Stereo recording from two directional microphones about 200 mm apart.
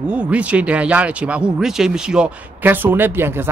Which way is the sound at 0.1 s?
5° right (ahead or behind).